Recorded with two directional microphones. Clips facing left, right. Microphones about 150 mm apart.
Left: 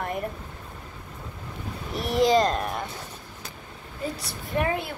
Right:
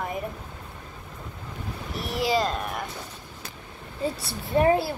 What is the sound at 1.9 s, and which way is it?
Speech, centre (ahead or behind).